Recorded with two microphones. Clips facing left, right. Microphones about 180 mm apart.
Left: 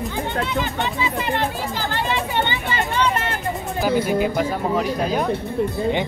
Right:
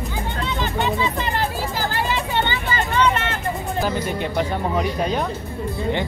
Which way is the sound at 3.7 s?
5° left (ahead or behind).